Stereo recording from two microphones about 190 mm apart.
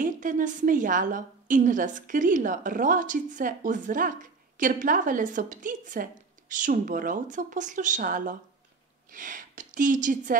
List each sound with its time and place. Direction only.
0.0 s a woman's voice: 45° right (ahead or behind)